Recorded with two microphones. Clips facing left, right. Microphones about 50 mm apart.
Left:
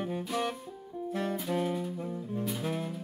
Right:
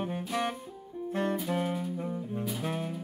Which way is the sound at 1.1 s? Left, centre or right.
Right.